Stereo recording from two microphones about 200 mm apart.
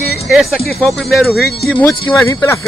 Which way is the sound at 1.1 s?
Centre (ahead or behind).